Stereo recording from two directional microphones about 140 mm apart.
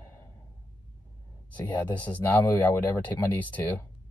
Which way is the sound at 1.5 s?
10° left (ahead or behind).